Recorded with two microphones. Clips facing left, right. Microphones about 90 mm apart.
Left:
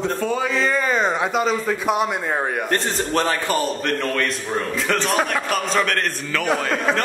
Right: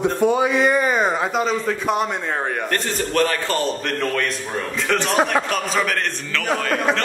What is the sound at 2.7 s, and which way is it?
Speech, 25° left (ahead or behind).